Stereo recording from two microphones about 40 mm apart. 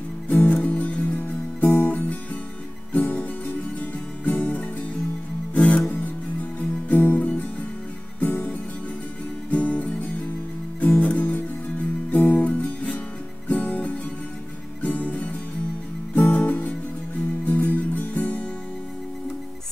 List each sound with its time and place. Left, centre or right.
0.3 s music: left